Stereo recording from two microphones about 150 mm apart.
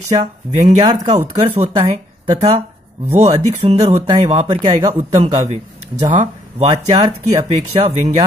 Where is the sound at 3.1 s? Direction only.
45° right (ahead or behind).